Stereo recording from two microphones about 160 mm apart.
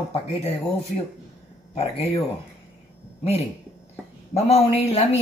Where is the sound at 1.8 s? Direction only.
40° left (ahead or behind).